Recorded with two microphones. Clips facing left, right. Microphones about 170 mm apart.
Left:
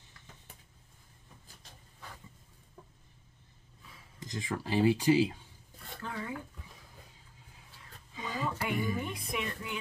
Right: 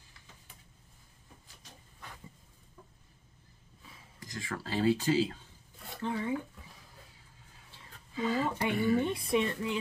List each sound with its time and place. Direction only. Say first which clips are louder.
4.2 s speech: left 3 dB; 20° left (ahead or behind)
5.9 s speech: right 6 dB; 25° right (ahead or behind)
8.1 s speech: right 7 dB; 15° left (ahead or behind)
8.5 s speech: right 4 dB; 20° right (ahead or behind)
9.3 s music: right 8 dB; 30° right (ahead or behind)